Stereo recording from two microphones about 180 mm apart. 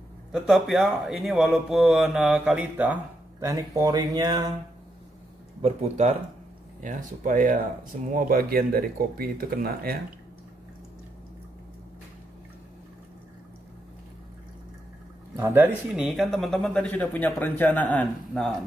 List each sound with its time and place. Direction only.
0.3 s speech: centre (ahead or behind)
3.4 s speech: 20° right (ahead or behind)
5.6 s speech: 35° right (ahead or behind); by 9.9 s 55° right (ahead or behind)
15.3 s speech: 10° right (ahead or behind); by 18.5 s 5° left (ahead or behind)